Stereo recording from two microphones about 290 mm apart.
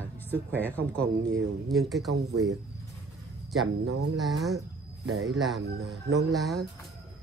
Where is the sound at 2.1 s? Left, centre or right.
Right.